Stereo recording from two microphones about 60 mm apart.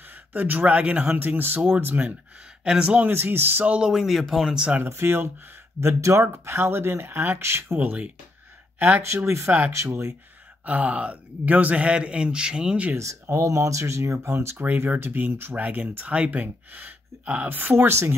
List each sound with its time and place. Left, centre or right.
0.1 s speech: right
2.6 s speech: centre
3.0 s speech: right
3.6 s speech: right
3.9 s speech: centre
4.6 s speech: right
4.8 s speech: right
5.8 s speech: right
9.0 s speech: right
10.6 s speech: right
12.9 s speech: right
15.0 s speech: right